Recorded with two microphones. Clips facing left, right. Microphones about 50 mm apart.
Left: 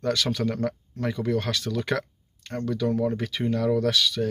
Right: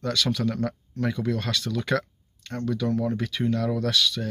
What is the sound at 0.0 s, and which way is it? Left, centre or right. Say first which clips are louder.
Speech: even; left.